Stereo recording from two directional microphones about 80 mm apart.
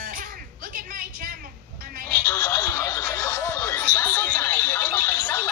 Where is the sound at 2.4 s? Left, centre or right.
Left.